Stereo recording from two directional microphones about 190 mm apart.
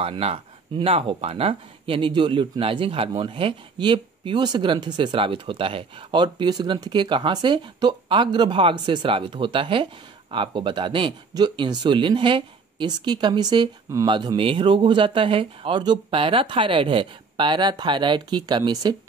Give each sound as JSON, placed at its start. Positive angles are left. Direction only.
{"t": 0.0, "sound": "speech", "side_deg": -30}